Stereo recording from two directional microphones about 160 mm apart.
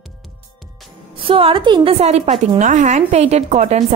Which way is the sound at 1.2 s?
35° right (ahead or behind).